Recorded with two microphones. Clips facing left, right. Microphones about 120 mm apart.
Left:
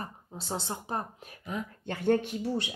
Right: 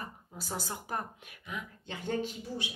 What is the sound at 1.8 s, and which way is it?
Speech, 55° left (ahead or behind).